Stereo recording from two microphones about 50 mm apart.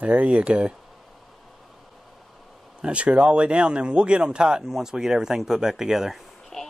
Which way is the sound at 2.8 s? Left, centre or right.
Right.